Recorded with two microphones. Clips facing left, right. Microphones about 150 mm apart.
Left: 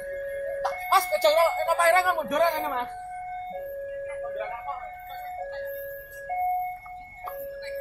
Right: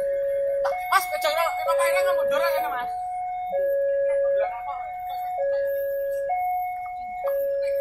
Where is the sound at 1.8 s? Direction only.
70° left (ahead or behind).